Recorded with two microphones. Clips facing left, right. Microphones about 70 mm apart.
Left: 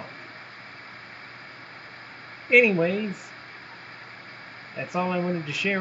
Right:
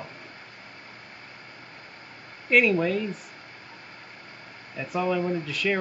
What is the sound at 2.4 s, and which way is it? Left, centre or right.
Speech, centre.